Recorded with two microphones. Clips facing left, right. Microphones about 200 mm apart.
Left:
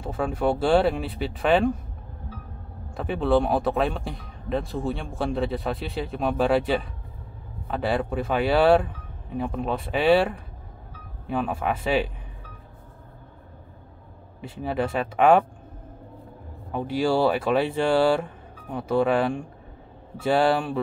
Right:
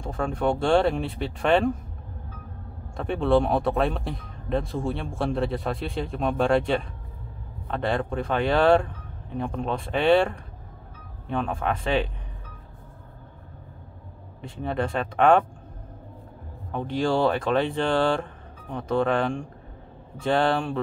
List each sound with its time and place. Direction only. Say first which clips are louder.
0.0 s speech: left 1 dB; 5° left (ahead or behind)
3.0 s speech: even; centre (ahead or behind)
14.4 s speech: left 1 dB; 5° left (ahead or behind)
16.7 s speech: left 1 dB; 5° left (ahead or behind)